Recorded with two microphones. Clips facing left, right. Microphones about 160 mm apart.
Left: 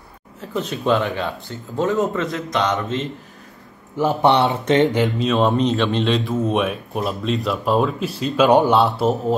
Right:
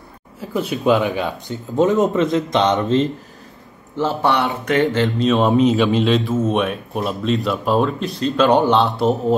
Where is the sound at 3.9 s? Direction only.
15° left (ahead or behind).